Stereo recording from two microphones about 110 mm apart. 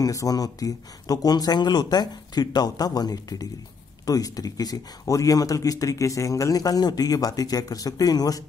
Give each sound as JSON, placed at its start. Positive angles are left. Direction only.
{"t": 0.0, "sound": "speech", "side_deg": 30}